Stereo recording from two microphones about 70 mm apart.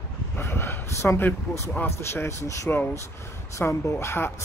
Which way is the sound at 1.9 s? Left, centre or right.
Left.